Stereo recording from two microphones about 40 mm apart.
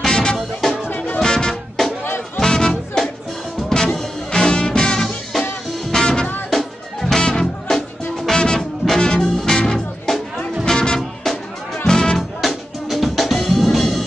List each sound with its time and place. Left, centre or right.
0.0 s music: centre
0.8 s music: left
1.2 s music: centre
2.0 s music: left
2.4 s music: centre
9.0 s music: centre
10.6 s music: centre
12.2 s music: centre